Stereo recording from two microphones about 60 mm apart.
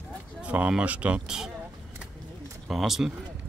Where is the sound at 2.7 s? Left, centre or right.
Centre.